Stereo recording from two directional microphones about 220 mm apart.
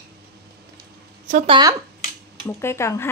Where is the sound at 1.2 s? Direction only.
35° right (ahead or behind).